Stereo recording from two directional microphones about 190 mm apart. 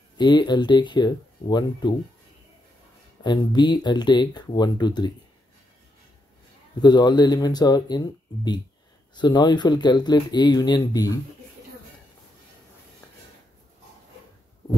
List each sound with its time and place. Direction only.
0.2 s speech: 25° left (ahead or behind)
3.3 s speech: 25° left (ahead or behind)
6.8 s speech: 20° left (ahead or behind)